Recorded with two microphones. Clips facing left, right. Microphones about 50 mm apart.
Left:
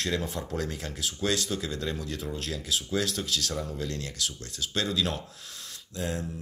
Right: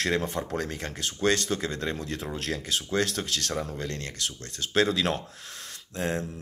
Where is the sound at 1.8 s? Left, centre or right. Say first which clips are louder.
Right 1 dB; right.